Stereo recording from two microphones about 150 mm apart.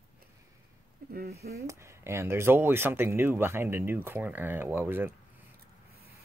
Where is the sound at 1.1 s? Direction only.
85° right.